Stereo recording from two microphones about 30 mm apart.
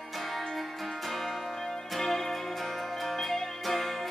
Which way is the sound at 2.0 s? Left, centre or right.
Centre.